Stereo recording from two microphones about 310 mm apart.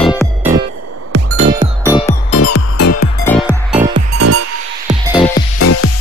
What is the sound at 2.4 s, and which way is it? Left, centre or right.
Music, left.